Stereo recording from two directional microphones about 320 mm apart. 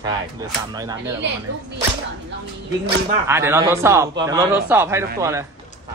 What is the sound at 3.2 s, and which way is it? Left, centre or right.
Speech, centre.